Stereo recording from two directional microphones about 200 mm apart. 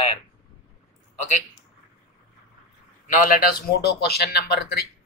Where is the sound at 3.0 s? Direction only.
45° left (ahead or behind).